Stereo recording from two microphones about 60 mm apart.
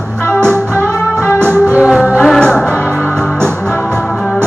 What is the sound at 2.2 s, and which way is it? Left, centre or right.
Music, centre.